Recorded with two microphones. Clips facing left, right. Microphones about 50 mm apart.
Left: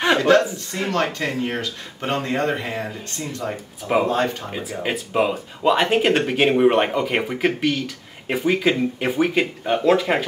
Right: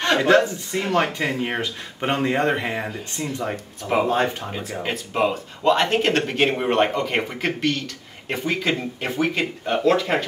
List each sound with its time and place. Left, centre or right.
0.7 s speech: centre
1.4 s speech: centre
3.8 s speech: centre